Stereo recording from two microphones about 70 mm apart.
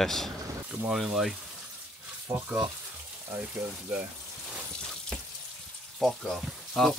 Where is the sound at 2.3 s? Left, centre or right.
Right.